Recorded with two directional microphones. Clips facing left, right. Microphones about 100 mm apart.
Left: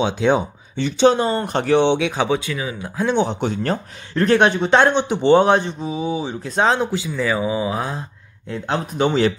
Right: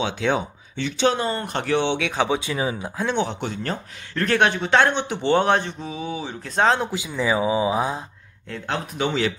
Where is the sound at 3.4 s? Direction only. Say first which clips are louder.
Left 6 dB; 45° left (ahead or behind).